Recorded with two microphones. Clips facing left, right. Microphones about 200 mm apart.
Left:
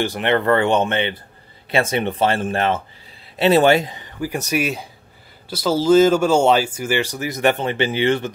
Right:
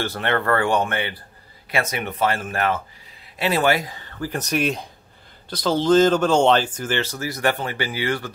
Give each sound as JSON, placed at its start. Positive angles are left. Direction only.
{"t": 0.0, "sound": "speech", "side_deg": 15}